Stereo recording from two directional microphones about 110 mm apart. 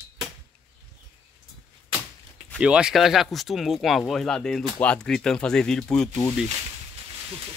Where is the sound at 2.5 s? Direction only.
5° right (ahead or behind).